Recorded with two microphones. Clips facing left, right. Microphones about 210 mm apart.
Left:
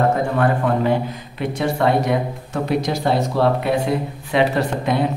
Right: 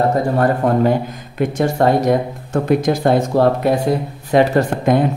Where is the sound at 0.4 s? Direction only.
40° right (ahead or behind).